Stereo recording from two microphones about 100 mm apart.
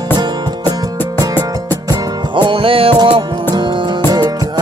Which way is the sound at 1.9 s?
50° right (ahead or behind).